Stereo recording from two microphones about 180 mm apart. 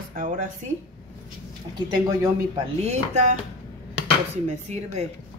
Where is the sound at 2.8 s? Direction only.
40° right (ahead or behind).